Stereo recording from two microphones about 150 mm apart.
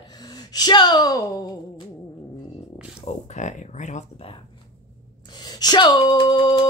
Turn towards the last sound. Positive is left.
turn(degrees=30)  # may be behind; listen again after turning